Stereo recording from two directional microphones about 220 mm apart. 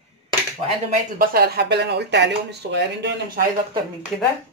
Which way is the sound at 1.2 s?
45° right (ahead or behind).